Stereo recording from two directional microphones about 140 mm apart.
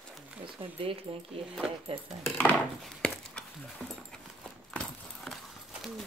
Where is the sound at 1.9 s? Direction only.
40° right (ahead or behind).